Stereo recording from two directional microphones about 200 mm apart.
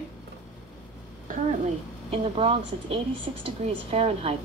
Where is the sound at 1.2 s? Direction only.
30° right (ahead or behind).